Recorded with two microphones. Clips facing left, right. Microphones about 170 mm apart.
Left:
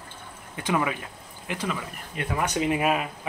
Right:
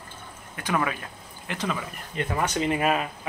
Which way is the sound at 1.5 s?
10° left (ahead or behind).